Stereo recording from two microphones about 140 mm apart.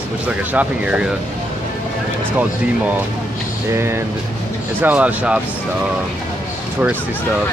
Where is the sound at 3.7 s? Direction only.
20° right (ahead or behind).